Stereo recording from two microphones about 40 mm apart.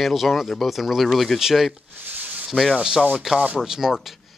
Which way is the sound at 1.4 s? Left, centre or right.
Centre.